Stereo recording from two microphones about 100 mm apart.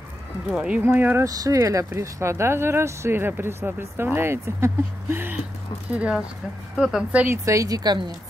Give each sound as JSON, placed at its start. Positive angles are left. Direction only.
{"t": 0.5, "sound": "speech", "side_deg": -10}
{"t": 0.8, "sound": "speech", "side_deg": -20}
{"t": 1.2, "sound": "speech", "side_deg": -35}
{"t": 7.4, "sound": "a woman's voice", "side_deg": -35}